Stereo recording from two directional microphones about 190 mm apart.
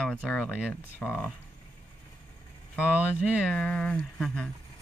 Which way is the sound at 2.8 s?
5° right (ahead or behind).